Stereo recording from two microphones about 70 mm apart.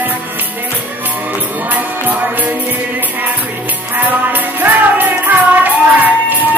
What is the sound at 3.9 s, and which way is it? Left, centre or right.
Music, right.